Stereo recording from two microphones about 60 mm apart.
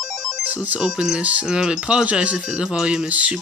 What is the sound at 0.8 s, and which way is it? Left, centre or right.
Speech, centre.